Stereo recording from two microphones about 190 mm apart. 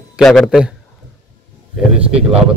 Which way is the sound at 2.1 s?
30° right (ahead or behind).